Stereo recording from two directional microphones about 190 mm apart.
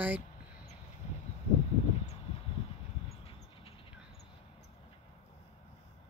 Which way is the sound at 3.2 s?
30° left (ahead or behind).